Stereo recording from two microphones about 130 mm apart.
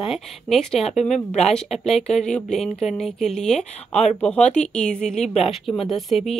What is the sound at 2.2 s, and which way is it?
Speech, 5° left (ahead or behind).